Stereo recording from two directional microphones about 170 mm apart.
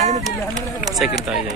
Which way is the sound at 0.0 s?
45° right (ahead or behind).